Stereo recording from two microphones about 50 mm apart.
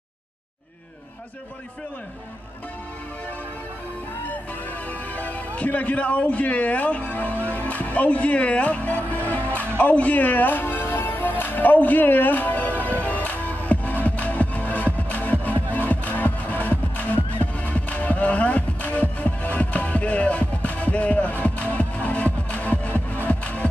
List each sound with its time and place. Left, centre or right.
5.1 s a man's voice: left
13.0 s music: left